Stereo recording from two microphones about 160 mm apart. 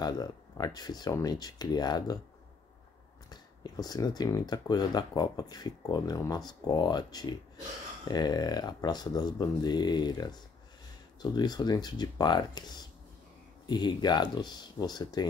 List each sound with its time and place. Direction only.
0.0 s speech: 25° left (ahead or behind)
3.3 s speech: 25° left (ahead or behind)